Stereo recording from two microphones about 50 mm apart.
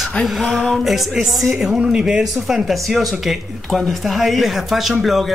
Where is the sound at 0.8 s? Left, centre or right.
Centre.